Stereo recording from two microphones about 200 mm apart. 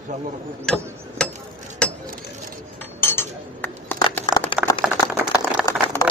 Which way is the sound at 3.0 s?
10° left (ahead or behind).